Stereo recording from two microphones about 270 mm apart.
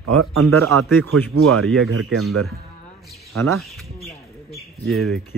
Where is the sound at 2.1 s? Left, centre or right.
Centre.